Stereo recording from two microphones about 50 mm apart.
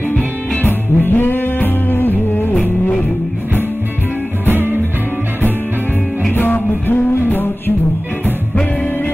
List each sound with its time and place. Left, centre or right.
0.6 s music: left
4.5 s music: right
6.3 s music: left